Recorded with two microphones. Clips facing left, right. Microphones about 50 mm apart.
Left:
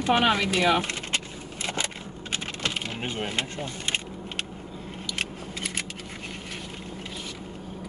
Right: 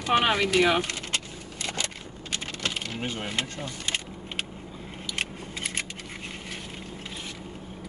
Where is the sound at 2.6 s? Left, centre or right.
Left.